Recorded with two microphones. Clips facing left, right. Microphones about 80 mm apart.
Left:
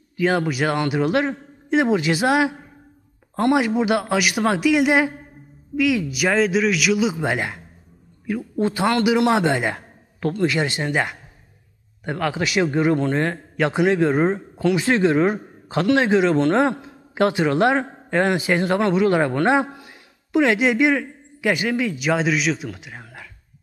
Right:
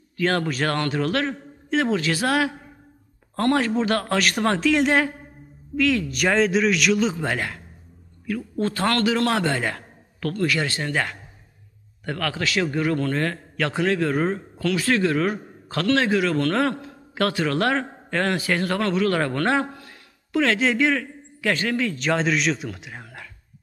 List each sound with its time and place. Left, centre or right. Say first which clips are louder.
0.2 s a man's voice: left 3 dB; centre